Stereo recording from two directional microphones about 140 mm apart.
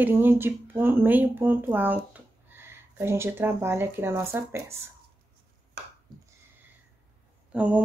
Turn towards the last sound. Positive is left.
turn(degrees=-10)  # may be behind; listen again after turning